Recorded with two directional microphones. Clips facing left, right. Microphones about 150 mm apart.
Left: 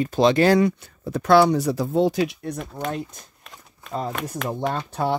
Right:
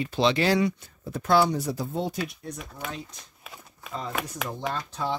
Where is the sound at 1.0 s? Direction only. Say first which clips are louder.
Left 6 dB; 80° left; by 2.8 s 60° left (ahead or behind).